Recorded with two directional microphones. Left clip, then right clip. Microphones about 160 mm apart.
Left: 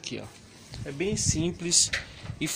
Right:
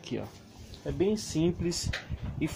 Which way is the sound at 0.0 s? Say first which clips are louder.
Even; 25° right (ahead or behind).